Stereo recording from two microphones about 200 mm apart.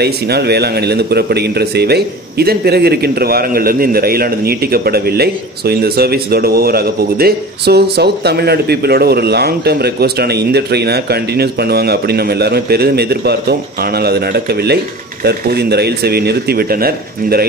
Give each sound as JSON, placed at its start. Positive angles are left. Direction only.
{"t": 0.0, "sound": "speech", "side_deg": -55}